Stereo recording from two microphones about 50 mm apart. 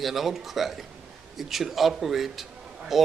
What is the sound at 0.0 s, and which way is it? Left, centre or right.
A man's voice, centre.